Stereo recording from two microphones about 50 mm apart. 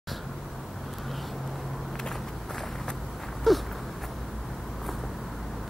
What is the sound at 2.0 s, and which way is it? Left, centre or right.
Walk, centre.